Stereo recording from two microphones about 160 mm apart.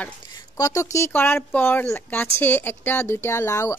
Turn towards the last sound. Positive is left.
turn(degrees=20)  # may be behind; listen again after turning